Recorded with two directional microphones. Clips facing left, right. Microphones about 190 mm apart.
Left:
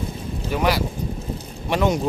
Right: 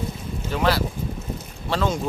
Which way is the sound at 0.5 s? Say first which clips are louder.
Left 1 dB; 15° left (ahead or behind).